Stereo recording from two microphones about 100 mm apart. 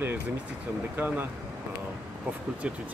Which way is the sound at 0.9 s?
20° right (ahead or behind).